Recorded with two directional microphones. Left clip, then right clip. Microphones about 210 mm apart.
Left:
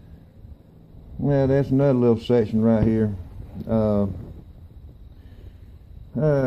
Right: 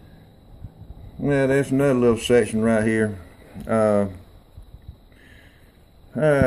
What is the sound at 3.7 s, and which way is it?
Speech, 20° left (ahead or behind).